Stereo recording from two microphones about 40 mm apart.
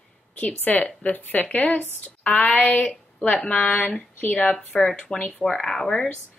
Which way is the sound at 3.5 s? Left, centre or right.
Left.